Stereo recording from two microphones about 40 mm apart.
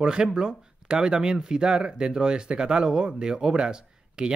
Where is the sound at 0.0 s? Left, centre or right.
Right.